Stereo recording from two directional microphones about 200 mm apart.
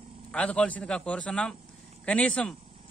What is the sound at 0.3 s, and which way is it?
Speech, 5° left (ahead or behind).